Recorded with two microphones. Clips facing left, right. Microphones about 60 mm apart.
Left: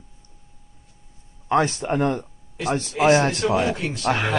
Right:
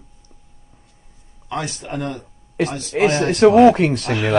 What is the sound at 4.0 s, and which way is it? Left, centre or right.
Speech, left.